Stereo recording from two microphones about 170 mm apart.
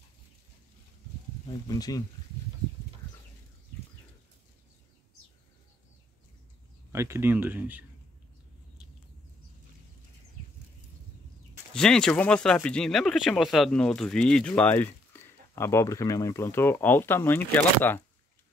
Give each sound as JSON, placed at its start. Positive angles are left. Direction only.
{"t": 1.5, "sound": "speech", "side_deg": 20}
{"t": 6.9, "sound": "speech", "side_deg": -15}
{"t": 11.7, "sound": "speech", "side_deg": 5}